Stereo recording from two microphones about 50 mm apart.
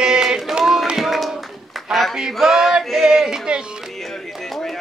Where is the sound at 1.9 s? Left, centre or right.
Centre.